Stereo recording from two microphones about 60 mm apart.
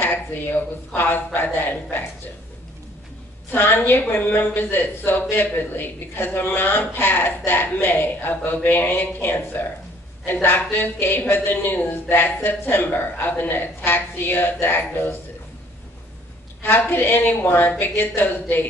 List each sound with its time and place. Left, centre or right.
0.0 s a woman's voice: left
3.5 s a woman's voice: left
16.6 s a woman's voice: left